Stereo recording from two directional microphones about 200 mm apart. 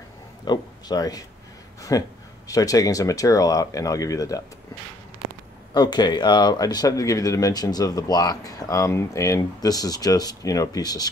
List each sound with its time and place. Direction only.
0.5 s speech: 20° left (ahead or behind)
5.7 s speech: 20° left (ahead or behind)